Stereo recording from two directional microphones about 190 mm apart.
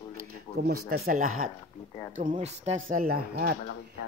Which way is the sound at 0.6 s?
55° right (ahead or behind).